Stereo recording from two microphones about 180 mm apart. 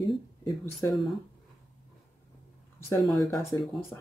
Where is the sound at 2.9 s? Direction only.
15° left (ahead or behind).